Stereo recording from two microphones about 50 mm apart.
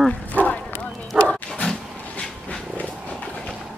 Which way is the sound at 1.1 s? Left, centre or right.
Centre.